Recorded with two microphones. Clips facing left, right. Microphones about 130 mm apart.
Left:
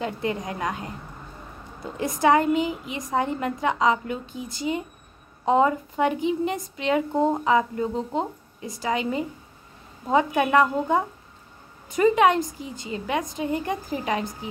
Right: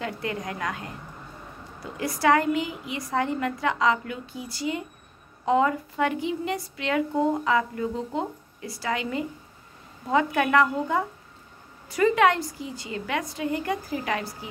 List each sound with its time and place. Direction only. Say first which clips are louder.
0.0 s a woman's voice: left 3 dB; 20° left (ahead or behind)